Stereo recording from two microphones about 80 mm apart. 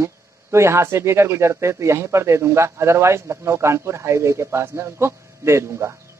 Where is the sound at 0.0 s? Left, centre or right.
Right.